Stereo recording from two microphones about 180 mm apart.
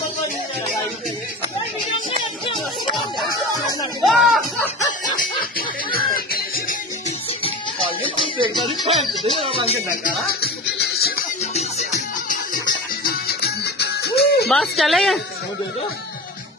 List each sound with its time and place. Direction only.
4.0 s music: centre (ahead or behind)
5.9 s music: 55° left (ahead or behind)
8.4 s music: 25° right (ahead or behind)
9.4 s speech: 30° right (ahead or behind)
10.0 s music: 55° left (ahead or behind)
12.6 s music: 60° left (ahead or behind)
14.5 s speech: centre (ahead or behind)